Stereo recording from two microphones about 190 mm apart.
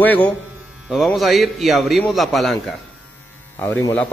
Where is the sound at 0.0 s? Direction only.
10° left (ahead or behind).